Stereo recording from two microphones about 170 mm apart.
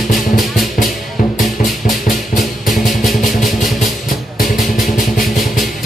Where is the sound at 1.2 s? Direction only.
55° left (ahead or behind).